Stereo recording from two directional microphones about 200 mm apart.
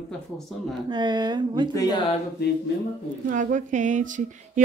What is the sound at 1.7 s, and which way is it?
Speech, 20° left (ahead or behind).